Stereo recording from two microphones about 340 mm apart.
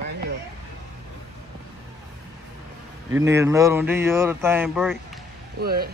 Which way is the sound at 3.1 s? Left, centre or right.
Centre.